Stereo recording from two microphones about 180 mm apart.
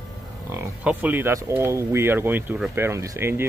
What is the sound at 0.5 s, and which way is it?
Speech, 10° right (ahead or behind).